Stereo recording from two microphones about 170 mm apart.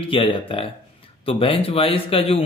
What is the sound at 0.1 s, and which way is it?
A man's voice, 30° left (ahead or behind).